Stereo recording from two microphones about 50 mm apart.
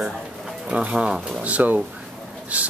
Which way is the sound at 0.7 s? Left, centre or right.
Right.